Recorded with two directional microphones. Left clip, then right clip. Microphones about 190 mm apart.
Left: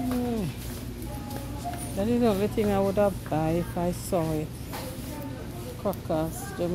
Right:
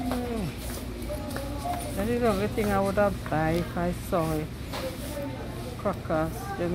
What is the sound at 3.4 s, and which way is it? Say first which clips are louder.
Speech: right 2 dB; 25° left (ahead or behind).